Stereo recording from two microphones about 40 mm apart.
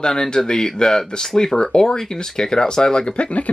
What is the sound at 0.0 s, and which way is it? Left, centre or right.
Speech, centre.